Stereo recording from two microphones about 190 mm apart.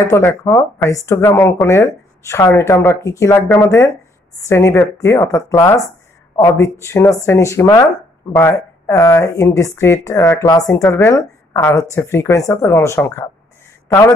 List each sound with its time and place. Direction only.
0.0 s speech: 15° left (ahead or behind)